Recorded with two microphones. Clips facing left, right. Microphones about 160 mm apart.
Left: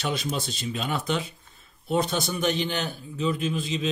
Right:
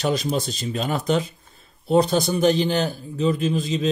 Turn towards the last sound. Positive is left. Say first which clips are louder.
# right 5 dB
turn(degrees=-40)  # may be behind; listen again after turning